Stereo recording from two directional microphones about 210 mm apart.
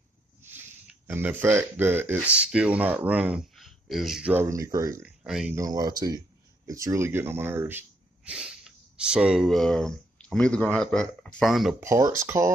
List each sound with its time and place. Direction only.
0.4 s a sound: 10° right (ahead or behind)
2.1 s speech: 5° right (ahead or behind)
5.2 s speech: centre (ahead or behind)
5.6 s speech: 20° right (ahead or behind); by 11.7 s centre (ahead or behind)
11.8 s speech: 15° right (ahead or behind)